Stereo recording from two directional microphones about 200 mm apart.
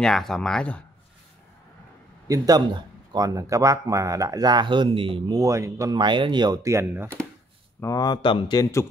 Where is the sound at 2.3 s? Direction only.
20° right (ahead or behind).